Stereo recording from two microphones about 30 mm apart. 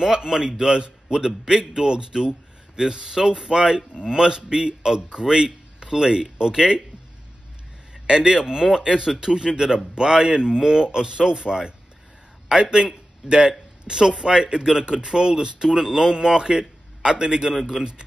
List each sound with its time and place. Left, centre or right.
0.0 s speech: right
7.9 s a man's voice: right
12.7 s a man's voice: right